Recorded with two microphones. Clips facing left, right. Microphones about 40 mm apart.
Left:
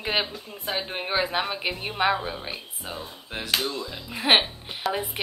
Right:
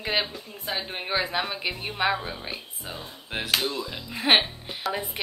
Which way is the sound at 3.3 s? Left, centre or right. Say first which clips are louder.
Right 3 dB; centre.